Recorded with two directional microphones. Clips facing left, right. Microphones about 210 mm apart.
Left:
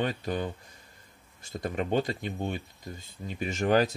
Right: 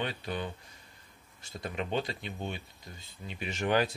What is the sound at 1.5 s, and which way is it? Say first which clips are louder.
Speech: left 5 dB; 50° left (ahead or behind).